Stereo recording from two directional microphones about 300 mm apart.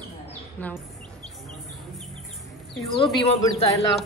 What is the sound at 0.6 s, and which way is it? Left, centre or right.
Speech, centre.